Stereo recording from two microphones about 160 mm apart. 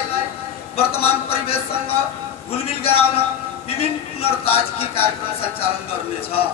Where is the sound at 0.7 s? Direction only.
40° left (ahead or behind).